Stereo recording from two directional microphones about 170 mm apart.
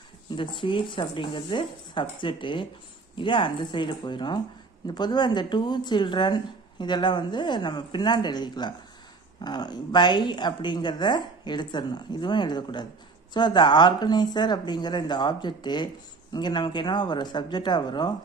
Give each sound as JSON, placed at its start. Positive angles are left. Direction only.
{"t": 0.4, "sound": "speech", "side_deg": 30}